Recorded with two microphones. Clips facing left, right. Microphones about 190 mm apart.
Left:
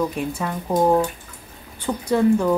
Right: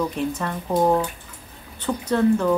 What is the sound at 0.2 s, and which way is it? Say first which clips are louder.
Speech: even; 10° left (ahead or behind).